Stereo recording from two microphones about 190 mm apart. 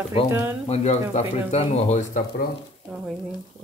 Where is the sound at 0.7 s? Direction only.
35° left (ahead or behind).